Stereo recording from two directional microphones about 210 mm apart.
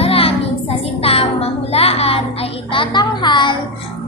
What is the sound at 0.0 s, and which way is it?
Music, 25° left (ahead or behind).